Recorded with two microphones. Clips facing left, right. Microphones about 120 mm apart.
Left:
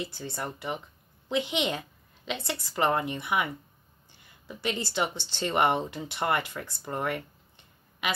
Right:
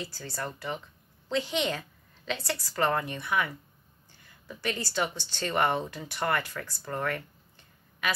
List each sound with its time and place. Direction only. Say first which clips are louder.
0.0 s a woman's voice: left 2 dB; 20° left (ahead or behind)